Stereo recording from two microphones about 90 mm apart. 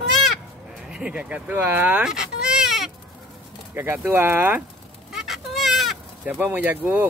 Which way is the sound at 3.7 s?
20° right (ahead or behind).